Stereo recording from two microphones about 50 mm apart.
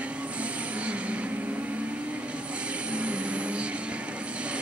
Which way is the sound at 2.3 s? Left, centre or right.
Right.